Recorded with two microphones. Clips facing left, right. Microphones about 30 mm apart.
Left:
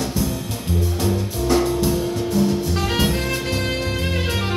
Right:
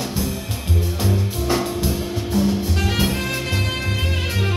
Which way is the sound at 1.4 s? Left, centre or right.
Centre.